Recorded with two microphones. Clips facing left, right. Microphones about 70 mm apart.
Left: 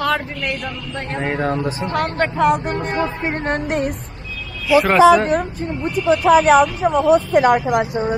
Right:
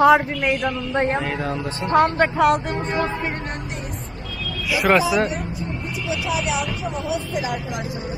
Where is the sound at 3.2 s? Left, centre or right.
Left.